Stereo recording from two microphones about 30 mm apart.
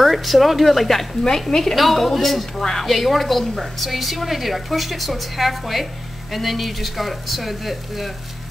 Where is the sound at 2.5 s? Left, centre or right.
Centre.